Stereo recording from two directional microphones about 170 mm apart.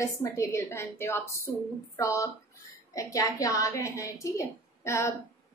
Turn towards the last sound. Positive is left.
turn(degrees=15)  # may be behind; listen again after turning